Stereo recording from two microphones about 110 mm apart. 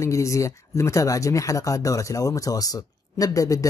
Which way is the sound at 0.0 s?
30° left (ahead or behind).